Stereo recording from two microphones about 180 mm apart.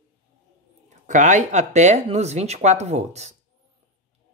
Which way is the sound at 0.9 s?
40° right (ahead or behind).